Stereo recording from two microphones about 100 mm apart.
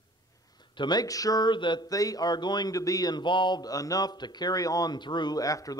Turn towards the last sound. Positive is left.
turn(degrees=35)  # may be behind; listen again after turning